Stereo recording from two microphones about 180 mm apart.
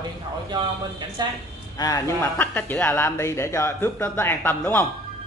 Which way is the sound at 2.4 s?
10° left (ahead or behind).